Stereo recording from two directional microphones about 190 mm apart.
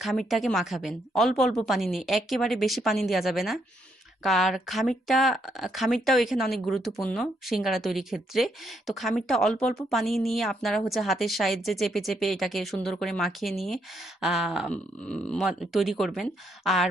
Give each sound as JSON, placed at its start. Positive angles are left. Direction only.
{"t": 0.0, "sound": "speech", "side_deg": 0}